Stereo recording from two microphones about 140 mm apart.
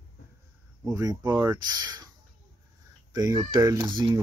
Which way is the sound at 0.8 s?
25° right (ahead or behind).